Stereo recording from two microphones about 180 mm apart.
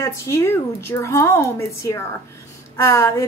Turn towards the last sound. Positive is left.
turn(degrees=15)  # may be behind; listen again after turning